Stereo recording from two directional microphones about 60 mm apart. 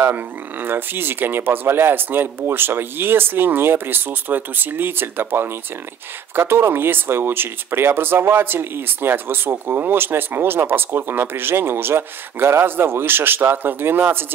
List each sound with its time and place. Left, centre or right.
0.0 s speech: right